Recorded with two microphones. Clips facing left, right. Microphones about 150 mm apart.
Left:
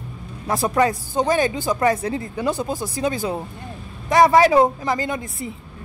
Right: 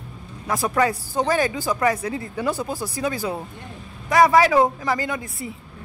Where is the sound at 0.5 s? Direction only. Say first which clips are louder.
Left 2 dB; 25° left (ahead or behind).